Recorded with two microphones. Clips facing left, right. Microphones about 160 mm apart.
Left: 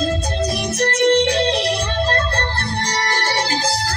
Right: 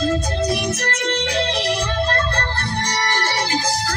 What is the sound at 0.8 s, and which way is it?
Music, 30° left (ahead or behind).